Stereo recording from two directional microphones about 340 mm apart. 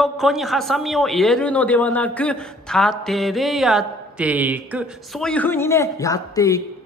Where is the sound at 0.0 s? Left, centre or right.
Centre.